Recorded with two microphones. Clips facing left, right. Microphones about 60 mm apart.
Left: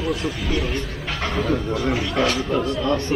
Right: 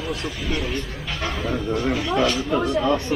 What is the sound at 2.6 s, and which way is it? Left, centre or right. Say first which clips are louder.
Speech: right 1 dB; right.